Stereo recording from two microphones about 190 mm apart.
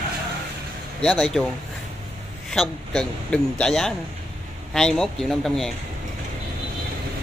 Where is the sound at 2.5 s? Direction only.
5° left (ahead or behind).